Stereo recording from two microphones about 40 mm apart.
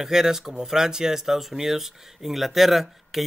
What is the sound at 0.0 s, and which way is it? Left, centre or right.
Speech, centre.